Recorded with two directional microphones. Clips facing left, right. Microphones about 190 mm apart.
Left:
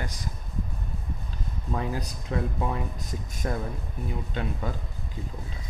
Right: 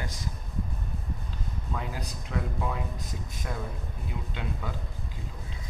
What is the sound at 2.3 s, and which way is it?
Speech, 45° left (ahead or behind).